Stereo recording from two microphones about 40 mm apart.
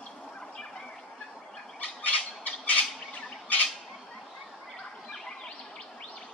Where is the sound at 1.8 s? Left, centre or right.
Left.